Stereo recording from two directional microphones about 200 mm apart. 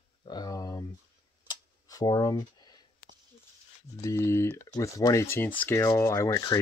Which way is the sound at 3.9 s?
15° left (ahead or behind).